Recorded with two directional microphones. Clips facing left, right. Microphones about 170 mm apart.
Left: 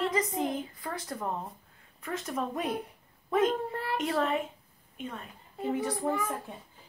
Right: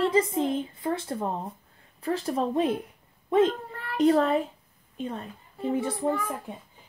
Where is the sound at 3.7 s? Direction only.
30° left (ahead or behind).